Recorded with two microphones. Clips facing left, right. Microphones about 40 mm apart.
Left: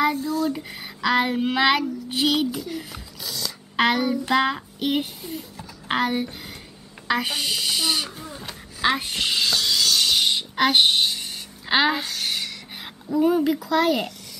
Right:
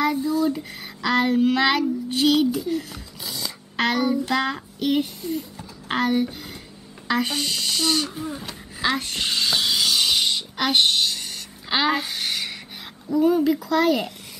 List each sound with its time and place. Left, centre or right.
0.1 s speech: centre
0.5 s child singing: centre
3.3 s a sound: centre
3.7 s child singing: centre
7.1 s speech: centre
9.5 s a sound: centre
10.1 s music: centre
10.5 s a child's voice: centre
11.7 s child singing: centre
13.1 s speech: centre